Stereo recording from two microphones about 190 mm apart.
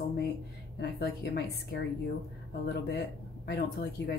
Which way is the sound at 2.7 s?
55° left (ahead or behind).